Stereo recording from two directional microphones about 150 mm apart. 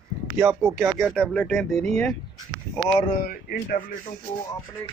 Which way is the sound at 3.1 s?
70° left (ahead or behind).